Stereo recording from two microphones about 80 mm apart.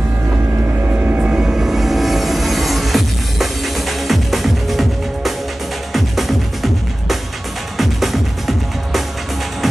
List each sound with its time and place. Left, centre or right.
0.8 s music: right; by 9.0 s centre